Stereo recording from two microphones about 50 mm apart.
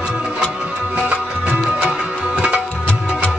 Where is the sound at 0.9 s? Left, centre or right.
Right.